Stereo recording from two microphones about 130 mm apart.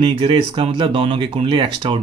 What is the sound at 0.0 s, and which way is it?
Speech, 40° right (ahead or behind).